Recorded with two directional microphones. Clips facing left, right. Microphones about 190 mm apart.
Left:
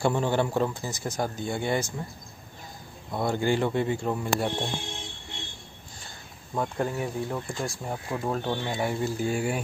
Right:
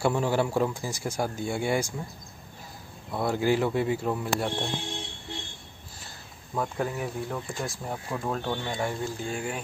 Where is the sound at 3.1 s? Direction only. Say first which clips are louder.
Right 1 dB; 5° right (ahead or behind).